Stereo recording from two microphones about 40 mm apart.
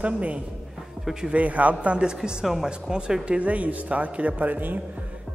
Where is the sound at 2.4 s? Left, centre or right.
Centre.